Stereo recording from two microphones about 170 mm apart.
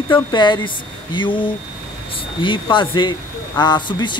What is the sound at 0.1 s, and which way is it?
A man's voice, 25° left (ahead or behind).